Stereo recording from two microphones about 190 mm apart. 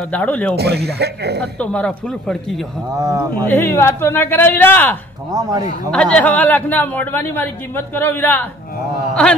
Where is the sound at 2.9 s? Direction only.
20° right (ahead or behind).